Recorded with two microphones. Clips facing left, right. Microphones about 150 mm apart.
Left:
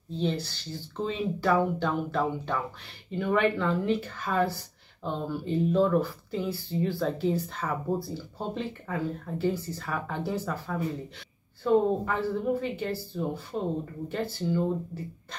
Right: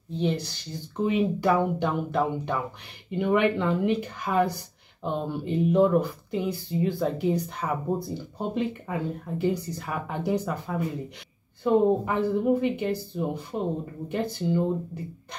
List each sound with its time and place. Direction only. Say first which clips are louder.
0.2 s speech: right 2 dB; 15° right (ahead or behind)